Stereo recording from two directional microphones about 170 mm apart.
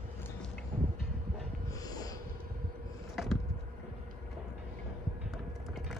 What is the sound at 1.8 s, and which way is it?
Snort, 20° left (ahead or behind).